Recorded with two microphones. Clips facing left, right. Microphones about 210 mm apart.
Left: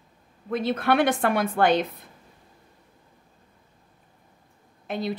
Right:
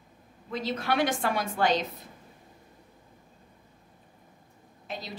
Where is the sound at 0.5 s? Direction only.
55° left (ahead or behind).